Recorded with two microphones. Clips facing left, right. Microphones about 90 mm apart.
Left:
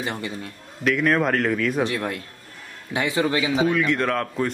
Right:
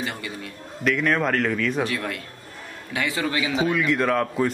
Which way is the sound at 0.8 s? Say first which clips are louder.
Left 2 dB; centre (ahead or behind).